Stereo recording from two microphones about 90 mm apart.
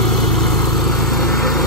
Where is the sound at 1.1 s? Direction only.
Centre (ahead or behind).